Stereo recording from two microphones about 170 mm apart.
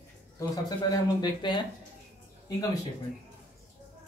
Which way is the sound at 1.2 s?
25° left (ahead or behind).